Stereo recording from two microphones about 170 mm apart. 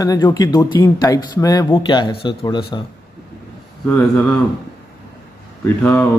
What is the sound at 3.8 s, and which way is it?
Speech, 10° left (ahead or behind).